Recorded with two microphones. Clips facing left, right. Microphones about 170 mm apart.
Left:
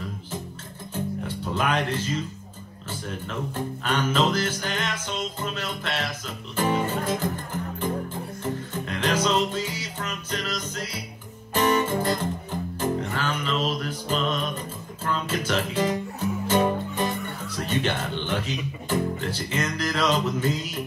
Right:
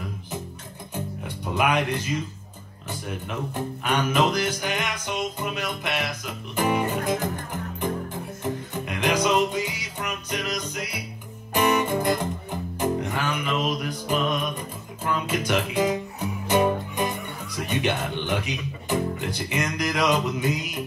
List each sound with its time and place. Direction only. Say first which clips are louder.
0.9 s music: left 4 dB; 15° right (ahead or behind)
3.1 s speech: right 1 dB; 15° right (ahead or behind)
8.8 s music: right 1 dB; 15° right (ahead or behind)
17.6 s speech: right 1 dB; 15° right (ahead or behind)